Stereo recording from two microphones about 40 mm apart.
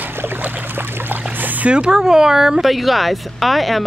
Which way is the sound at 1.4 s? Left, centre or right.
Right.